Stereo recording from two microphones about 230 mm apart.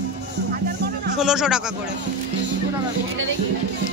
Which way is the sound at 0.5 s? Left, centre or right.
Right.